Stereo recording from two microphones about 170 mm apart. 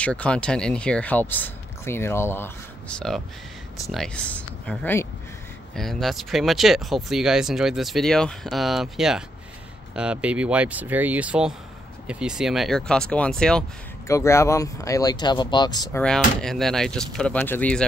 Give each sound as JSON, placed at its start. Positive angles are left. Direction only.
{"t": 0.0, "sound": "speech", "side_deg": 5}
{"t": 14.0, "sound": "speech", "side_deg": 15}
{"t": 15.9, "sound": "speech", "side_deg": 5}